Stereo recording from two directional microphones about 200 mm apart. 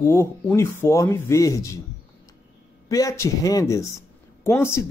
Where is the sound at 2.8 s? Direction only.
15° left (ahead or behind).